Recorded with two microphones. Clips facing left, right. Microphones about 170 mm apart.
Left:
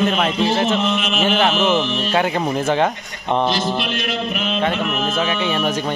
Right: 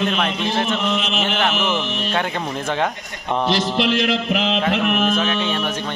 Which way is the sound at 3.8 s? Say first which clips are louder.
Right 4 dB; 90° right.